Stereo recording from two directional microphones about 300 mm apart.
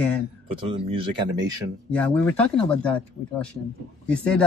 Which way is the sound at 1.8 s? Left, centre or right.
Centre.